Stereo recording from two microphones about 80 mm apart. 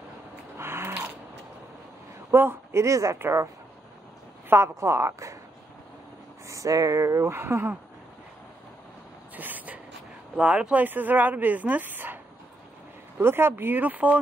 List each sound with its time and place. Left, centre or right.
0.6 s a sound: right
2.3 s a woman's voice: right
3.2 s a woman's voice: right
4.5 s a woman's voice: right
6.4 s a woman's voice: right
7.3 s speech: right
9.3 s vehicle: right
10.3 s speech: centre
13.2 s speech: right